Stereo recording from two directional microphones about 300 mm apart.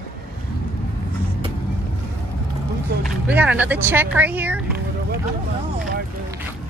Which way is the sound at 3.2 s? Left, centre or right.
Centre.